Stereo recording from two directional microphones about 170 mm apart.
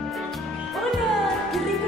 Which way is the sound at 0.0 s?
Centre (ahead or behind).